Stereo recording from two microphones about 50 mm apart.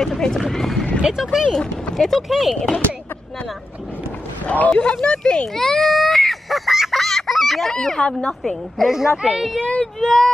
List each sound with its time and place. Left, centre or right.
0.0 s speech: centre
1.0 s speech: centre
1.5 s speech: centre
2.0 s speech: centre
4.5 s speech: left
5.6 s baby cry: centre
7.0 s fowl: centre
7.7 s speech: centre
8.3 s speech: centre
8.8 s speech: centre
9.6 s speech: centre
10.0 s speech: centre